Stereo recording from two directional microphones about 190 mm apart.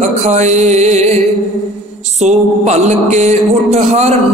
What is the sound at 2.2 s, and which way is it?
Music, 35° right (ahead or behind).